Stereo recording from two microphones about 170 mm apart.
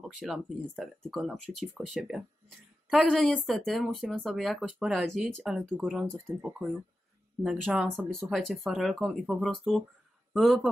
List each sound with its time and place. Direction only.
0.0 s speech: centre (ahead or behind)